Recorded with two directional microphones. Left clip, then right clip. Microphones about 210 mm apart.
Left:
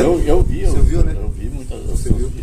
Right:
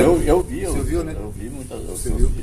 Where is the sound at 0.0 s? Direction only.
5° right (ahead or behind).